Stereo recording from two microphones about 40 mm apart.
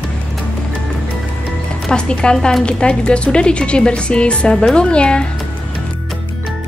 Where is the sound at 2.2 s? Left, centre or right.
Left.